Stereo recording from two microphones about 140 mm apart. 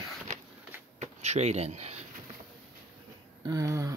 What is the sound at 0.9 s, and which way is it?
Speech, 55° right (ahead or behind).